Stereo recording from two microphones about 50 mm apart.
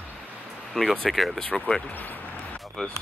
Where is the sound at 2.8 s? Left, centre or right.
Centre.